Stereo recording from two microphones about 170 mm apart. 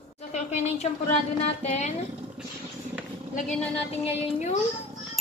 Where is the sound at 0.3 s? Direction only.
40° left (ahead or behind).